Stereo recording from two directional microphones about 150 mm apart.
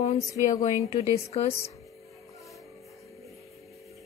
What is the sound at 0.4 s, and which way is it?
A woman's voice, 50° left (ahead or behind).